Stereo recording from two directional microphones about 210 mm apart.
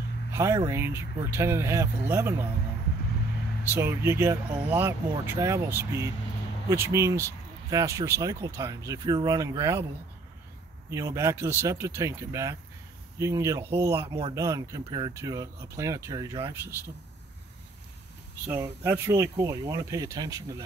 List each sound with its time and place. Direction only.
0.3 s speech: 15° right (ahead or behind)
3.7 s speech: 10° right (ahead or behind)
10.9 s speech: 15° right (ahead or behind)
18.5 s speech: 15° right (ahead or behind)